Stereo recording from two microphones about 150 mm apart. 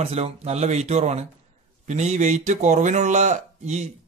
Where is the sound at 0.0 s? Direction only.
45° right (ahead or behind).